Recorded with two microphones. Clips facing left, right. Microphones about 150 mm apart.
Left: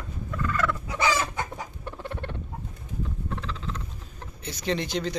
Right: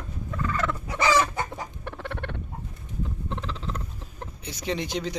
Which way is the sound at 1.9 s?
60° right (ahead or behind).